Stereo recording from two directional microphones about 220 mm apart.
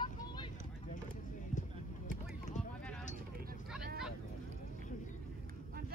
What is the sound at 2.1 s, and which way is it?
Vehicle, 35° left (ahead or behind).